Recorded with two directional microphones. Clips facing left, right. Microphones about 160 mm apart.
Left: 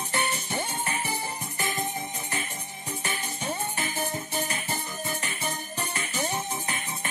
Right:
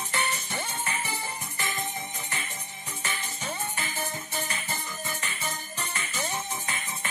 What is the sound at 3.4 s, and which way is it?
Music, 30° left (ahead or behind).